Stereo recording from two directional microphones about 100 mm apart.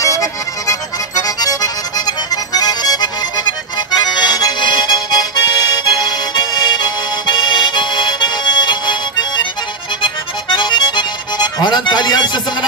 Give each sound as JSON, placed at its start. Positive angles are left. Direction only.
{"t": 0.0, "sound": "music", "side_deg": 35}